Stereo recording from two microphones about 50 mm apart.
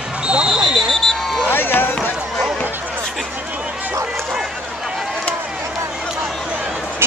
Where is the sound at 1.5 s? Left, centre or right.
Left.